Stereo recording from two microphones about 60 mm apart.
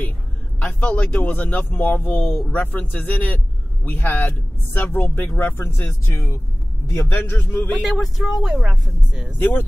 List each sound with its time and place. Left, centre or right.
0.7 s speech: left
7.8 s speech: centre
8.6 s speech: centre
9.4 s speech: left